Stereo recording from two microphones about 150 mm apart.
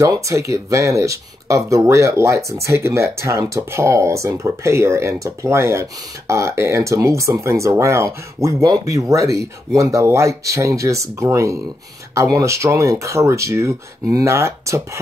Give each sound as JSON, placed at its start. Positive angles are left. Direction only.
{"t": 0.0, "sound": "speech", "side_deg": -20}